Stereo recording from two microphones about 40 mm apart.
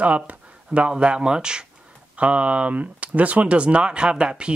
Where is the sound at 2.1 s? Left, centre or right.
Right.